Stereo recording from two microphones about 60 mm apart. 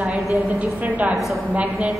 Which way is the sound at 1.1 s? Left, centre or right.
Centre.